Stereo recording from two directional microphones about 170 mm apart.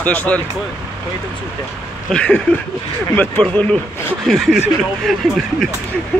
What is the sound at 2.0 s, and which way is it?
Speech, 5° left (ahead or behind).